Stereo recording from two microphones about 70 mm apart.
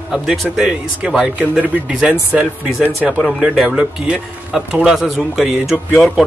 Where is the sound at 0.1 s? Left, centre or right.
Centre.